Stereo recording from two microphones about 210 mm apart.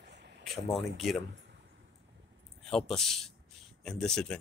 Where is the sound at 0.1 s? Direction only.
55° right (ahead or behind).